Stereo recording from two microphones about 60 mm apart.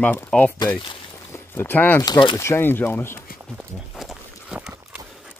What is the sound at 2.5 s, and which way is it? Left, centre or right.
Speech, left.